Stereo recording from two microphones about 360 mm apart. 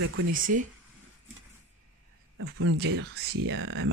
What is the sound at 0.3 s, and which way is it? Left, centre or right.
Speech, right.